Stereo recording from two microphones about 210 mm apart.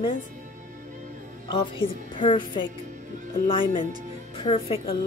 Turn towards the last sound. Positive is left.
turn(degrees=25)  # may be behind; listen again after turning